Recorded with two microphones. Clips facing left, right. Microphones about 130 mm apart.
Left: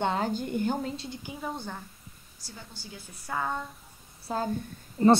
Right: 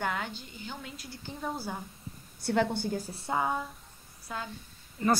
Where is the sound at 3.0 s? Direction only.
30° right (ahead or behind).